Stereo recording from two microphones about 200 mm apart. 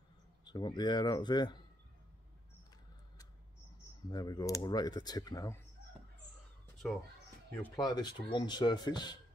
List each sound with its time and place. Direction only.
0.5 s speech: 20° left (ahead or behind)
4.1 s speech: 20° left (ahead or behind)
7.6 s speech: 15° left (ahead or behind)